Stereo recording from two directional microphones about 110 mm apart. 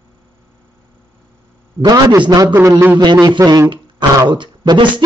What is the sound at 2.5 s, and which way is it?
Speech, 25° right (ahead or behind).